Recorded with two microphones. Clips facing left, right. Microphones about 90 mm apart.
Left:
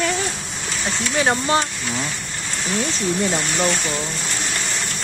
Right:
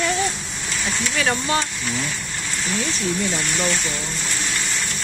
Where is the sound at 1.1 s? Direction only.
30° left (ahead or behind).